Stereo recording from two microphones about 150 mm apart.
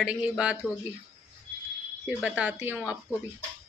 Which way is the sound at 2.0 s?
5° right (ahead or behind).